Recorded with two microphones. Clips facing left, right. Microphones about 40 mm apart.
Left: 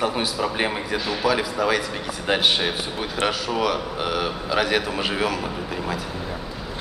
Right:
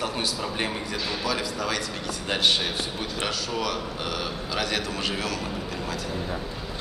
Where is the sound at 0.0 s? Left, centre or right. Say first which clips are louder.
Left 5 dB; centre.